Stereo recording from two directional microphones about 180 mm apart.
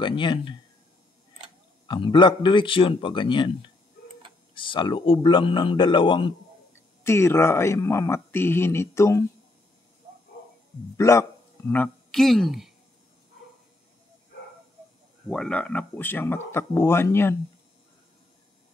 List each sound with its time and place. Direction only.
0.0 s a man's voice: 25° left (ahead or behind)
1.9 s a man's voice: 25° left (ahead or behind)
7.0 s speech: 15° left (ahead or behind)
11.0 s a man's voice: 15° left (ahead or behind); by 12.7 s centre (ahead or behind)
15.2 s speech: 5° left (ahead or behind)